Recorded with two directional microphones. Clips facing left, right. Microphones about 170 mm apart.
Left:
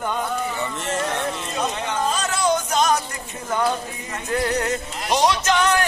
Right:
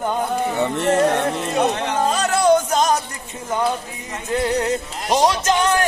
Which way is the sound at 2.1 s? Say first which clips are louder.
Right 9 dB; 60° right (ahead or behind).